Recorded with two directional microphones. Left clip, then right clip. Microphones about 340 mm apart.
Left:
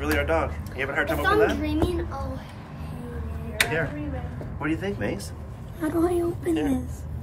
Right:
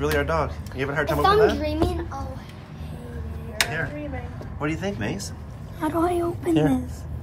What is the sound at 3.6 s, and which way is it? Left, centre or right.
Speech, centre.